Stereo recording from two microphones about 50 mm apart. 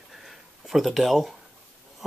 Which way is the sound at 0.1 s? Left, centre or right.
Centre.